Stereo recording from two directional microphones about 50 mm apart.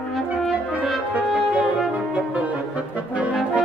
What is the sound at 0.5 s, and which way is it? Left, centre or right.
French horn, right.